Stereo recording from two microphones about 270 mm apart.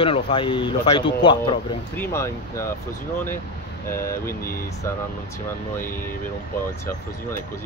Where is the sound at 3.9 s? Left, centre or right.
Centre.